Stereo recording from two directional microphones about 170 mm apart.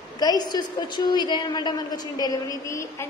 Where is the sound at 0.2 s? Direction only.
25° left (ahead or behind).